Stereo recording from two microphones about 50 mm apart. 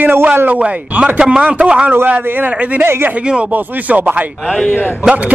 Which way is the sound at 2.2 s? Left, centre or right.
Right.